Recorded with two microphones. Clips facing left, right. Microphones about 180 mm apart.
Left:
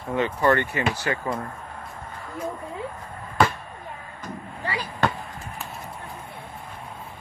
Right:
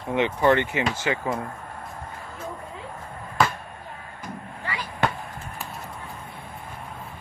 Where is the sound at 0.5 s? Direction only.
20° right (ahead or behind).